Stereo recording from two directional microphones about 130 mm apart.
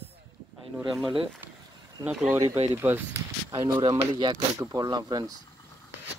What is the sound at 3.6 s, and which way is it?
Speech, 30° right (ahead or behind).